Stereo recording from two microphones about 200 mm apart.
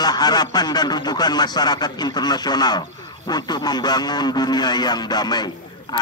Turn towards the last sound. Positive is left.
turn(degrees=20)  # may be behind; listen again after turning